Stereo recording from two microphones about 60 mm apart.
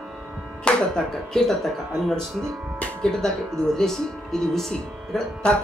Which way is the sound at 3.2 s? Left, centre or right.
Centre.